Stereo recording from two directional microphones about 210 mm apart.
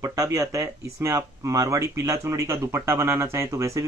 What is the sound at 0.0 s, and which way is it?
Speech, 15° right (ahead or behind).